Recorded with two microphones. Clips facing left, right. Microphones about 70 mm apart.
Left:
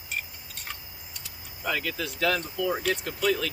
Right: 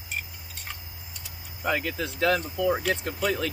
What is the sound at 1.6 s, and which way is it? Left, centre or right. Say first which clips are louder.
Speech: right 2 dB; right.